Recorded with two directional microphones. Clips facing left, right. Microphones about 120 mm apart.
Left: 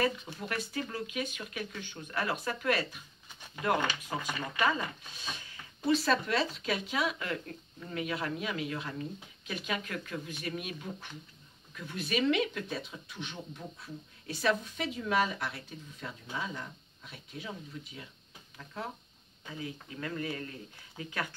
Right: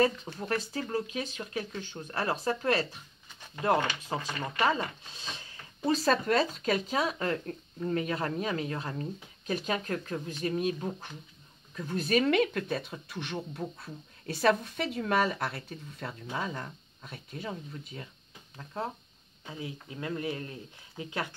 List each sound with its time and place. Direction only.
0.0 s speech: 35° right (ahead or behind)
4.1 s speech: 30° right (ahead or behind)
5.9 s speech: 40° right (ahead or behind)
19.6 s speech: 20° right (ahead or behind)